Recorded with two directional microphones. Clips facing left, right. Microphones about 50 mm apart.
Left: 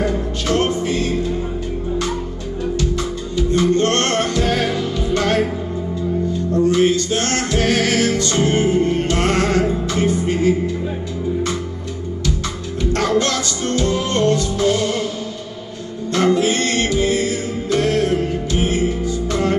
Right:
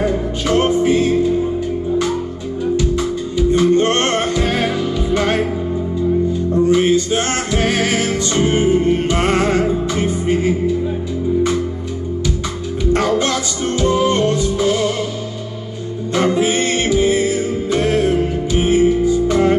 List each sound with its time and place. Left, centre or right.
0.0 s music: centre
2.7 s music: centre
6.5 s music: centre
12.9 s music: centre
16.1 s music: centre